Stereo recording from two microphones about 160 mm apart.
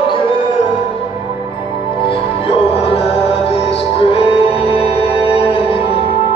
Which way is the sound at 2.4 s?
40° left (ahead or behind).